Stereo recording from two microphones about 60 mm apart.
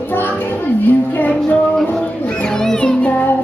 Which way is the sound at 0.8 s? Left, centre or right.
Left.